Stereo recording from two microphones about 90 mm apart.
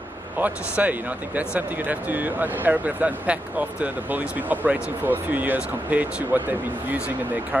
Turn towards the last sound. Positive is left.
turn(degrees=-20)  # may be behind; listen again after turning